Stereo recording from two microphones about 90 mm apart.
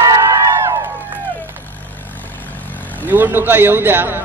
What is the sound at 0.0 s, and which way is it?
Music, 35° right (ahead or behind).